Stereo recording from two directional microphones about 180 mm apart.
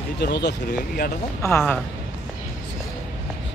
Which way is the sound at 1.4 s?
15° left (ahead or behind).